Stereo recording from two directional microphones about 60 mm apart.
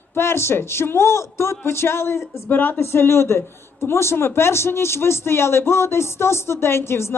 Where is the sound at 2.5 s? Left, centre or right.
Left.